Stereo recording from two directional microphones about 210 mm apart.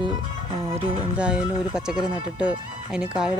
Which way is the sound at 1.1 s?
5° right (ahead or behind).